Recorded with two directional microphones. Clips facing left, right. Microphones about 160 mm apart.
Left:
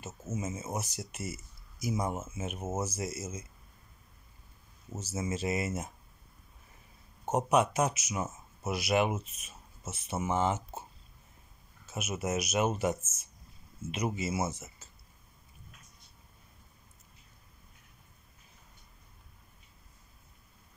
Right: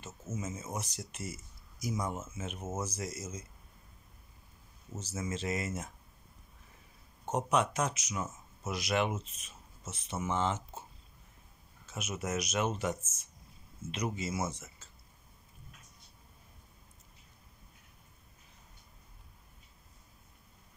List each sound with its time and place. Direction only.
0.0 s speech: 10° left (ahead or behind)
4.9 s speech: 10° left (ahead or behind)
7.2 s speech: 10° left (ahead or behind)
11.8 s speech: 10° left (ahead or behind)
13.9 s speech: 10° left (ahead or behind)